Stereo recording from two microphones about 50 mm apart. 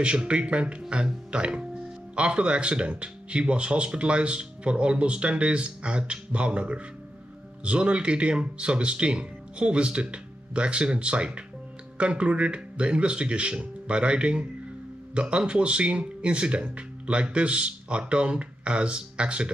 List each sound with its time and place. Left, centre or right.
0.0 s speech: right